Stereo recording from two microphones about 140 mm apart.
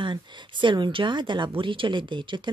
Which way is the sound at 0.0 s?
35° right (ahead or behind).